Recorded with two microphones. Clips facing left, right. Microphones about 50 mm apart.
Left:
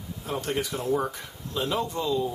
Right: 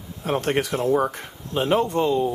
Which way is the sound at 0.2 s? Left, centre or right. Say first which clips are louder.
Right 7 dB; right.